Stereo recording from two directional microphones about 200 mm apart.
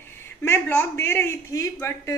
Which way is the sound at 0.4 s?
10° left (ahead or behind).